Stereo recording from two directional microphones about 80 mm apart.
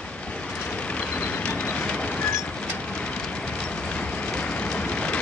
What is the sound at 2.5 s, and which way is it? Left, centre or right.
Train, centre.